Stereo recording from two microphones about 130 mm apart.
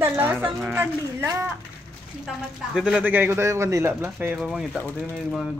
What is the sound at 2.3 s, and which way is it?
A man's voice, 5° right (ahead or behind).